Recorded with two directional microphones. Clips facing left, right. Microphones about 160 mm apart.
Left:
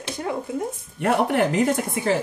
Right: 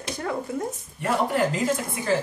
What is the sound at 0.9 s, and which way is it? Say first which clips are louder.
Speech: left 3 dB; 65° left (ahead or behind).